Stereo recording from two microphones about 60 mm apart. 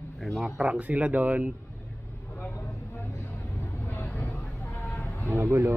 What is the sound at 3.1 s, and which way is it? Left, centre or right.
Vehicle, left.